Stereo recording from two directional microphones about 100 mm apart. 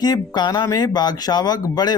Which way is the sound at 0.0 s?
45° left (ahead or behind).